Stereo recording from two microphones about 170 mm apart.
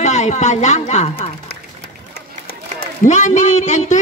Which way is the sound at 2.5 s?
60° left (ahead or behind).